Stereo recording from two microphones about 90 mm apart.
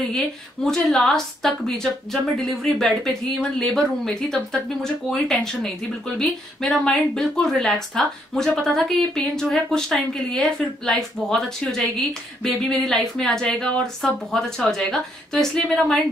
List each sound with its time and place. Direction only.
0.7 s speech: 5° left (ahead or behind)